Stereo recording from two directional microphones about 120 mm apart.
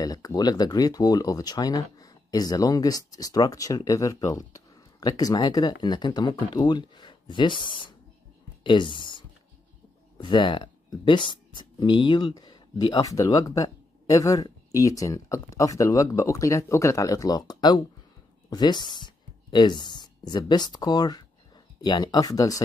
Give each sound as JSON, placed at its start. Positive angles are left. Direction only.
{"t": 0.0, "sound": "speech", "side_deg": 30}